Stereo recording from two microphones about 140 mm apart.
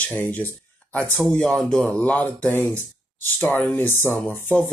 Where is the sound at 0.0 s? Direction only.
10° left (ahead or behind).